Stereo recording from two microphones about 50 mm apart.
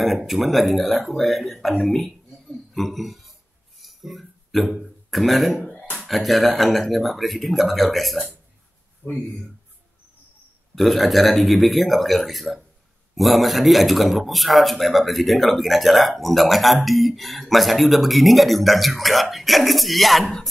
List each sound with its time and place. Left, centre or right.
0.0 s speech: centre
3.8 s a sound: centre
5.1 s speech: centre
9.0 s speech: left
10.7 s speech: centre